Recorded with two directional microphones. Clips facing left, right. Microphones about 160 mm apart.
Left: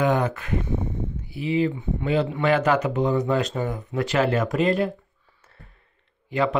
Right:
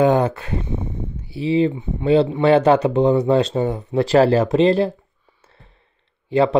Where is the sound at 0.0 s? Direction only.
30° right (ahead or behind).